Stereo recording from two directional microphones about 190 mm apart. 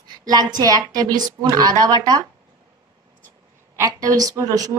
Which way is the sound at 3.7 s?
20° right (ahead or behind).